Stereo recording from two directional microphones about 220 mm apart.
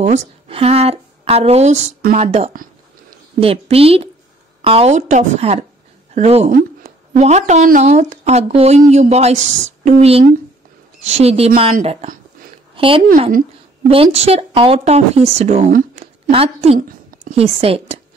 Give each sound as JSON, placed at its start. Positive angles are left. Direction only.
{"t": 0.0, "sound": "a woman's voice", "side_deg": -30}